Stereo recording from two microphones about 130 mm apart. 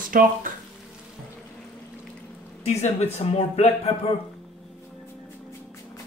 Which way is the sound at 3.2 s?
50° left (ahead or behind).